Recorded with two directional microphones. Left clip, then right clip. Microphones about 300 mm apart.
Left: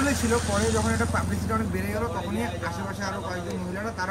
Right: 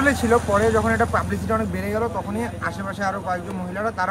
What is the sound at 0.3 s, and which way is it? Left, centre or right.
Speech, centre.